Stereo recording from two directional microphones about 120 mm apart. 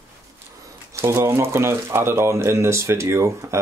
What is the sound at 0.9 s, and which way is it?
Speech, 20° right (ahead or behind).